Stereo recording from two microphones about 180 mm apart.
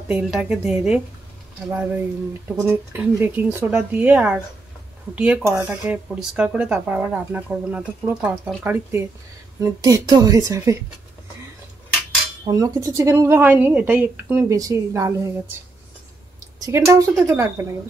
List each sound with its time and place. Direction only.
0.1 s a woman's voice: 5° right (ahead or behind)
5.4 s speech: 15° right (ahead or behind)
12.4 s speech: 20° right (ahead or behind)
16.5 s speech: 15° right (ahead or behind)